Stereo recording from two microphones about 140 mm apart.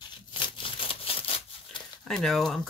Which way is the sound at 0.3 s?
40° left (ahead or behind).